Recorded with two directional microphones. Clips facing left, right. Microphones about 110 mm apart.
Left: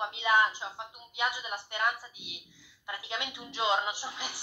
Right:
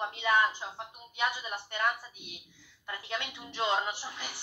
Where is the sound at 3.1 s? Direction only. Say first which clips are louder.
Right 1 dB; 15° left (ahead or behind).